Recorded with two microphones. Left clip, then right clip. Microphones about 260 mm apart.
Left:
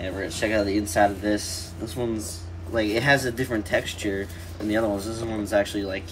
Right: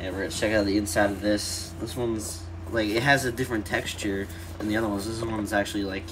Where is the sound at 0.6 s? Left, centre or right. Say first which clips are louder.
Left 3 dB; centre.